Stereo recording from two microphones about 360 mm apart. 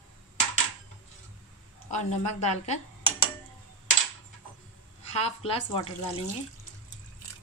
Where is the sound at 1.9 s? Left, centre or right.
Centre.